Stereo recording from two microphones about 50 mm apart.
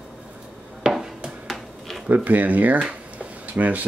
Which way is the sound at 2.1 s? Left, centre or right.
Right.